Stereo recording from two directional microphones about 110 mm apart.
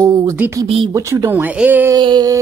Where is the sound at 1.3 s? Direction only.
15° right (ahead or behind).